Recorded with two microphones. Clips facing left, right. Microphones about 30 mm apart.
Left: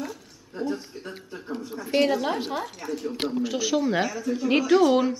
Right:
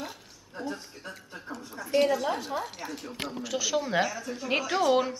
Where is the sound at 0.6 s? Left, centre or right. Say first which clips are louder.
Left 6 dB; centre.